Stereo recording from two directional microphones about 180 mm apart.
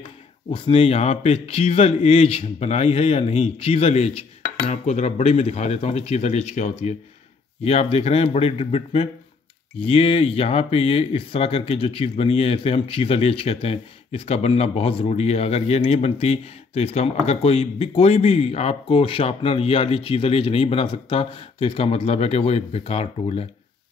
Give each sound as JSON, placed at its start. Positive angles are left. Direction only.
{"t": 0.5, "sound": "speech", "side_deg": 30}